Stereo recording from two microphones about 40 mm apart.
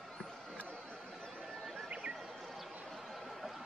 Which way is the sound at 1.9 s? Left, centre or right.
Right.